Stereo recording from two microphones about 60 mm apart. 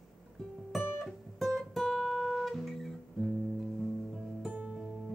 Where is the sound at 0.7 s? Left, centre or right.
Centre.